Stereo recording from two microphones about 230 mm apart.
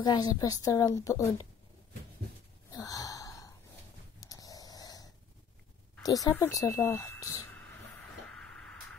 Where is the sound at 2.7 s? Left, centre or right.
Centre.